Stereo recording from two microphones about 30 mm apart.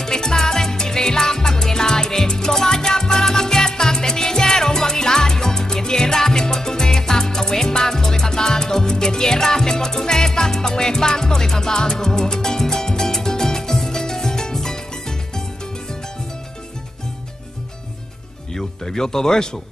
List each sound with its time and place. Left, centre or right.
0.0 s music: centre
18.9 s speech: centre